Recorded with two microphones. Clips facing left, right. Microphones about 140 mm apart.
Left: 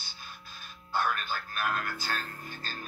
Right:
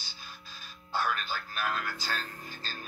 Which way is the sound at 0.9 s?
50° left (ahead or behind).